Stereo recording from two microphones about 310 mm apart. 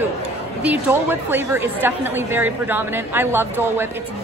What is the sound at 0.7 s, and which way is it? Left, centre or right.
A woman's voice, centre.